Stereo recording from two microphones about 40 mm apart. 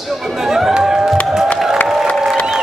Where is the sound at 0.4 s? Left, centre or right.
Centre.